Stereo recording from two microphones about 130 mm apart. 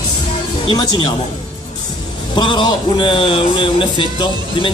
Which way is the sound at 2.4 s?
40° left (ahead or behind).